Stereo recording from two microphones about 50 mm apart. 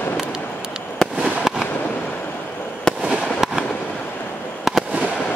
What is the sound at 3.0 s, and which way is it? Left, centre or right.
Fireworks, centre.